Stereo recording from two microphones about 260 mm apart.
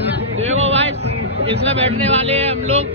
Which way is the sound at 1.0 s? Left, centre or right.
Right.